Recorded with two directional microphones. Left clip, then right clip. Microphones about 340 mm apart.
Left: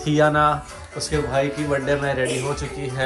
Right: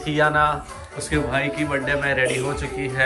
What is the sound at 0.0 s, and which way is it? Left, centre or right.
A man's voice, centre.